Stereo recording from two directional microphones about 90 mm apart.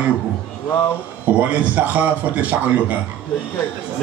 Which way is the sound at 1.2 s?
15° right (ahead or behind).